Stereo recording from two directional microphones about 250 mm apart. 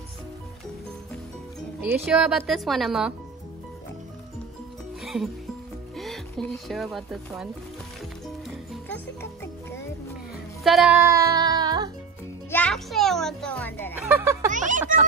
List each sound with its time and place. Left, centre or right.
2.0 s a woman's voice: centre
5.0 s music: centre
5.9 s speech: centre
8.9 s music: centre
10.6 s music: centre
12.4 s a child's voice: centre
14.0 s speech: centre
14.5 s speech: right